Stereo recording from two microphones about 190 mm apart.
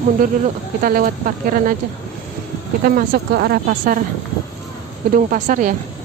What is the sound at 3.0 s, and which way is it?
Speech, 55° right (ahead or behind).